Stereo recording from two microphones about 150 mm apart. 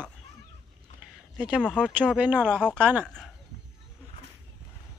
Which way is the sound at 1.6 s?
5° left (ahead or behind).